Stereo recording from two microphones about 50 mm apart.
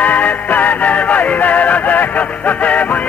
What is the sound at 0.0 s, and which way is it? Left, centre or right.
Music, left.